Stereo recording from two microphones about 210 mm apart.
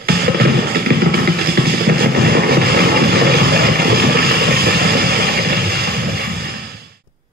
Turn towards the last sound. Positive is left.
turn(degrees=-45)  # may be behind; listen again after turning